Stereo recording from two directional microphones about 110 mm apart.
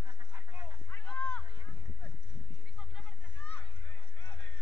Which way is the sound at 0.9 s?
15° left (ahead or behind).